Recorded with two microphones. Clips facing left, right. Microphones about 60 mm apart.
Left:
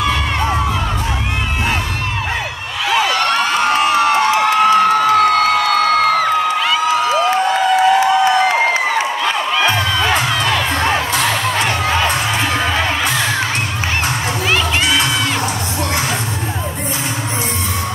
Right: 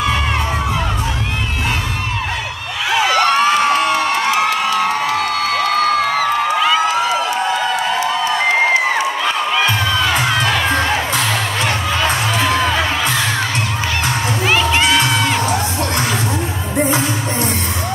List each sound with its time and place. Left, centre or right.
4.6 s a sound: left
9.9 s crowd: centre
12.4 s music: centre